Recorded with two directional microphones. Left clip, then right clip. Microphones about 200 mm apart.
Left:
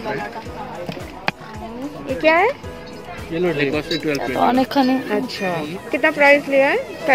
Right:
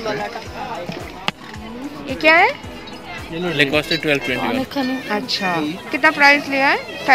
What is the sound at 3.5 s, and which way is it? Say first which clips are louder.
Speech: right 4 dB; 40° right (ahead or behind).